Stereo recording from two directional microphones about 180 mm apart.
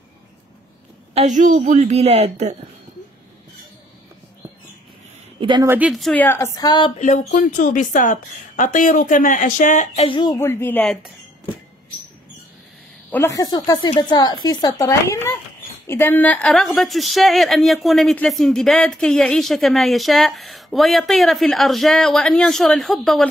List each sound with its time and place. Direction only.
1.1 s a woman's voice: 40° right (ahead or behind)
5.4 s a woman's voice: 25° right (ahead or behind)
5.7 s speech: 5° right (ahead or behind); by 6.9 s 25° left (ahead or behind)
7.0 s speech: 40° left (ahead or behind)
7.2 s speech: 55° left (ahead or behind)
10.0 s speech: 25° left (ahead or behind)
13.1 s a woman's voice: 15° left (ahead or behind); by 23.2 s centre (ahead or behind)